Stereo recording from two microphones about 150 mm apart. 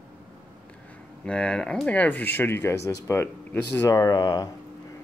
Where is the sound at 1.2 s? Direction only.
5° left (ahead or behind); by 4.5 s 25° left (ahead or behind).